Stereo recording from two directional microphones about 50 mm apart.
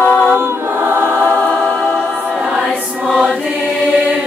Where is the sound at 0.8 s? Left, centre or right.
Right.